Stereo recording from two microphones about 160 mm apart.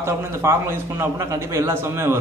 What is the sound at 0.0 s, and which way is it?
A man's voice, 15° right (ahead or behind).